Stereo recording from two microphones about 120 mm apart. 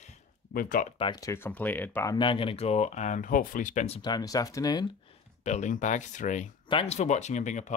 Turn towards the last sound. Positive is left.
turn(degrees=85)